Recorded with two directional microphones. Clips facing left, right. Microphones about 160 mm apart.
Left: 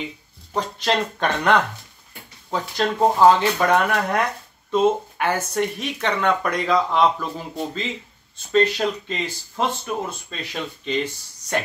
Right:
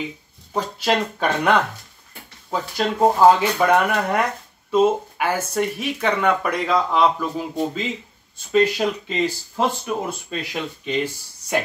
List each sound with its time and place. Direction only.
0.5 s speech: 5° right (ahead or behind)